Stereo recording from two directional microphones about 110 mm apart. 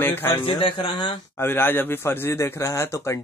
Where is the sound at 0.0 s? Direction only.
20° left (ahead or behind).